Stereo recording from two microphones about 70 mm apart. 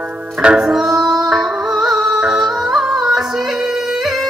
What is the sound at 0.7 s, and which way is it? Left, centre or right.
Music, centre.